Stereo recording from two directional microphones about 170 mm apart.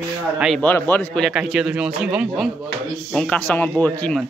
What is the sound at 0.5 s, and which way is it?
A man's voice, 10° left (ahead or behind).